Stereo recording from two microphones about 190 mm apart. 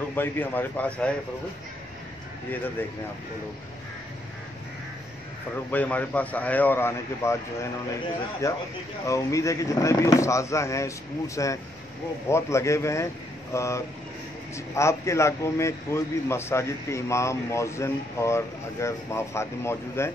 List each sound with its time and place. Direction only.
0.1 s a man's voice: 10° left (ahead or behind)
5.7 s a man's voice: 10° left (ahead or behind)
8.4 s a man's voice: 15° left (ahead or behind)